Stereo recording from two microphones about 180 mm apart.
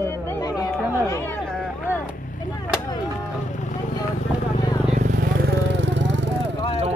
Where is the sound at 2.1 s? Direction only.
45° left (ahead or behind).